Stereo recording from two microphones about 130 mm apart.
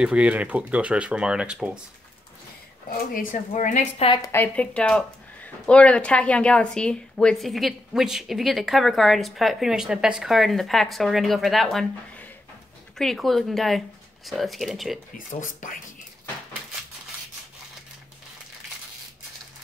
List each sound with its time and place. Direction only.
0.0 s speech: 10° right (ahead or behind)
3.2 s speech: 80° left
4.2 s speech: 15° left (ahead or behind); by 11.9 s centre (ahead or behind)
12.9 s speech: 5° left (ahead or behind)
15.1 s speech: 90° left